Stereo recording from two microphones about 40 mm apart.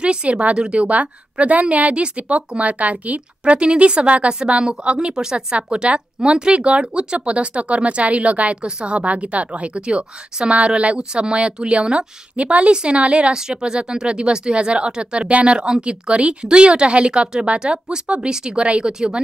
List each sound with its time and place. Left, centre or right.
0.0 s speech: right
0.8 s a woman's voice: right
3.5 s a woman's voice: right
13.3 s speech: centre